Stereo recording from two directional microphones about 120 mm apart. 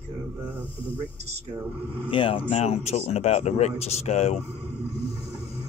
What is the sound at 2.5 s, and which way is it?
Speech, 60° left (ahead or behind).